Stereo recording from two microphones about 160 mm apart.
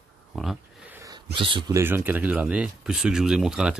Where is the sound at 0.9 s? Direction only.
20° right (ahead or behind).